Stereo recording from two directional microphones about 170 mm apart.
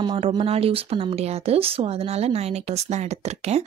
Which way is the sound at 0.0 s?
25° right (ahead or behind).